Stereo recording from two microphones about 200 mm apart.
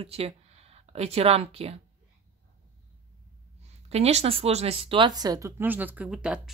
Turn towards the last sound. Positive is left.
turn(degrees=-5)  # may be behind; listen again after turning